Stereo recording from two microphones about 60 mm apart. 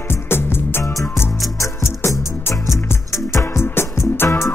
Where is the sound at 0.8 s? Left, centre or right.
Left.